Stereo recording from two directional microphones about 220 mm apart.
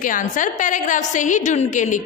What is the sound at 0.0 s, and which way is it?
A woman's voice, 35° left (ahead or behind).